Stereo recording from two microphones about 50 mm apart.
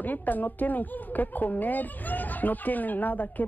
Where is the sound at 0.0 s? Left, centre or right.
Left.